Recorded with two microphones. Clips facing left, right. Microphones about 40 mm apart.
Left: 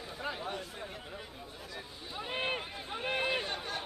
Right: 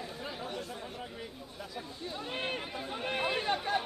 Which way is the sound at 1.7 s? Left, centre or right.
Centre.